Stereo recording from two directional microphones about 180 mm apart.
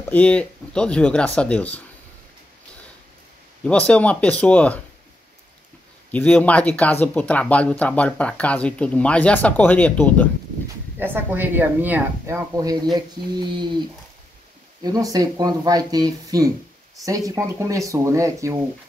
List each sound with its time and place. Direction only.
0.1 s speech: 5° left (ahead or behind)
3.6 s speech: 5° left (ahead or behind)
6.1 s speech: 10° left (ahead or behind)
11.0 s speech: 10° right (ahead or behind)